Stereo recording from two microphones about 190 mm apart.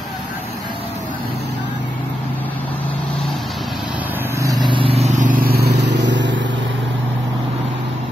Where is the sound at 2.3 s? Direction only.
10° left (ahead or behind); by 6.8 s 75° right (ahead or behind).